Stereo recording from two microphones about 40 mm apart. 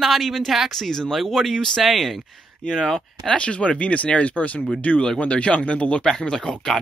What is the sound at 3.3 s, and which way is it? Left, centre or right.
Speech, left.